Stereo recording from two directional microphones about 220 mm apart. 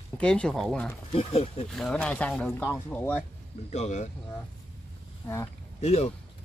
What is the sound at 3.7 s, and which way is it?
Speech, 30° left (ahead or behind).